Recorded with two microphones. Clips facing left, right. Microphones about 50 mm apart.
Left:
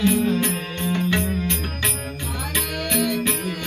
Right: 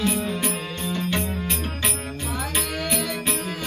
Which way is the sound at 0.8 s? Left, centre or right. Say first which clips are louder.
Left 4 dB; left.